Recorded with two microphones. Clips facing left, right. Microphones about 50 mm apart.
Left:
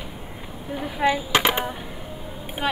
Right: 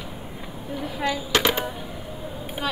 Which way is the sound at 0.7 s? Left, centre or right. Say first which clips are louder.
Left 5 dB; left.